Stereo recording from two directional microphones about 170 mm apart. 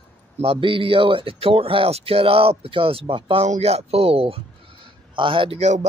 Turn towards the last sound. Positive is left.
turn(degrees=-40)  # may be behind; listen again after turning